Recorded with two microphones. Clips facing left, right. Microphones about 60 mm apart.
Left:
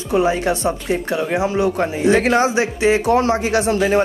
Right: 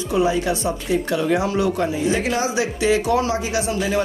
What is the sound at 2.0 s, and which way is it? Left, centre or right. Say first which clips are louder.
Speech: left 9 dB; left.